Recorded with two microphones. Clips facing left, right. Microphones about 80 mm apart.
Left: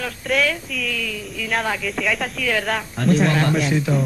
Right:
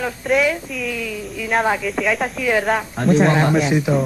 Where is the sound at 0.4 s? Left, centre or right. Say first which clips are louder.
Right 3 dB; centre.